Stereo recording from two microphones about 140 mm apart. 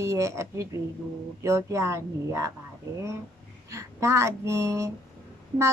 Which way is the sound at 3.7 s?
20° right (ahead or behind).